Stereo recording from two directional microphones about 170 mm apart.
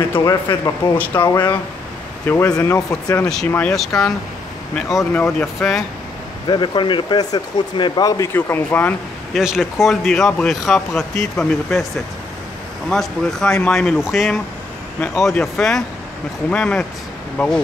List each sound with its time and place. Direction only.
0.1 s speech: 25° left (ahead or behind)
0.9 s speech: 10° left (ahead or behind)
1.2 s speech: 25° left (ahead or behind)
2.2 s speech: 15° left (ahead or behind)
3.3 s speech: 5° left (ahead or behind)
6.4 s speech: 25° left (ahead or behind); by 11.8 s centre (ahead or behind)
12.9 s speech: centre (ahead or behind)